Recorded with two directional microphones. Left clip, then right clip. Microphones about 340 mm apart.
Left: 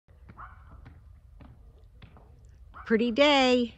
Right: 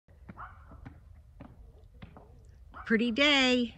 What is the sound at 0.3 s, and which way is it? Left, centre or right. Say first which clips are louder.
Dog: even; right.